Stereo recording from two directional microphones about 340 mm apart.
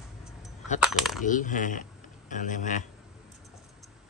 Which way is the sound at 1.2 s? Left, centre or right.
Left.